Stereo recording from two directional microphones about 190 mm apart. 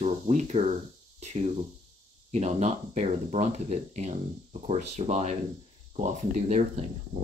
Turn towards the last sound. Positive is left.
turn(degrees=-35)  # may be behind; listen again after turning